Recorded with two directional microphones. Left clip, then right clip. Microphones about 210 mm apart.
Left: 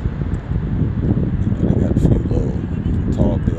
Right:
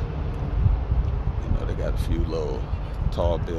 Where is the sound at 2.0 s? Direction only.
Centre (ahead or behind).